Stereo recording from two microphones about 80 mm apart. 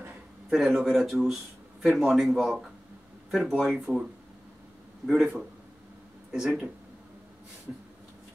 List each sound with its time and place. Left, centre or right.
0.5 s speech: centre